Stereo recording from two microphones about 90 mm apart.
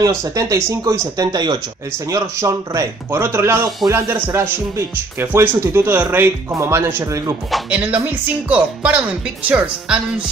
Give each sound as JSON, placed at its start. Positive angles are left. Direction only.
{"t": 0.0, "sound": "speech", "side_deg": -35}
{"t": 1.2, "sound": "speech", "side_deg": -50}
{"t": 1.9, "sound": "a man's voice", "side_deg": -35}
{"t": 7.7, "sound": "speech", "side_deg": -15}